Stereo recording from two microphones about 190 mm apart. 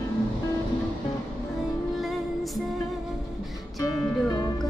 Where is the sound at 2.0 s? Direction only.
Centre (ahead or behind).